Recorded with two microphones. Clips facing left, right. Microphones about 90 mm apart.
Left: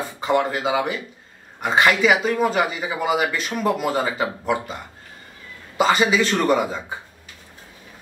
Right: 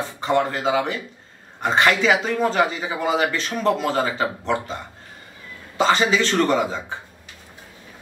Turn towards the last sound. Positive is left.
turn(degrees=10)  # may be behind; listen again after turning